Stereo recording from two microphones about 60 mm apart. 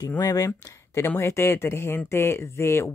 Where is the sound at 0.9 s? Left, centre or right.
Left.